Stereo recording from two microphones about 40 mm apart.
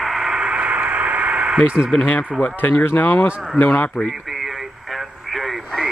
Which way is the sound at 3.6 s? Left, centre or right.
Left.